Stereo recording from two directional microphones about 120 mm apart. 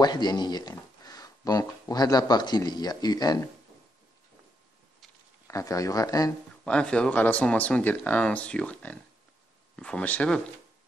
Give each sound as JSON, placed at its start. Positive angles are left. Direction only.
{"t": 0.0, "sound": "speech", "side_deg": 35}
{"t": 5.5, "sound": "speech", "side_deg": 30}
{"t": 6.6, "sound": "speech", "side_deg": 5}